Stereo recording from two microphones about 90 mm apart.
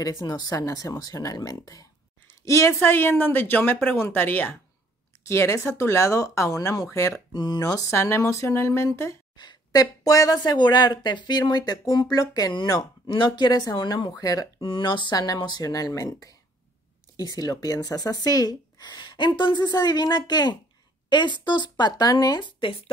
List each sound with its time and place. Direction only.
0.0 s speech: 40° left (ahead or behind)
2.2 s a sound: 35° left (ahead or behind)
2.8 s speech: 25° left (ahead or behind)
7.3 s speech: 50° left (ahead or behind)
7.9 s speech: 30° left (ahead or behind)
9.4 s speech: 50° left (ahead or behind)
14.6 s speech: 75° left (ahead or behind)
14.9 s speech: 55° left (ahead or behind)
15.6 s speech: 40° left (ahead or behind)